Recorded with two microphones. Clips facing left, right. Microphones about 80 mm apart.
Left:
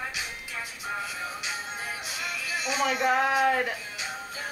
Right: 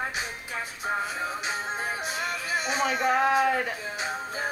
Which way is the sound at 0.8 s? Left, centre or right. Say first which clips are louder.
Right 5 dB; right.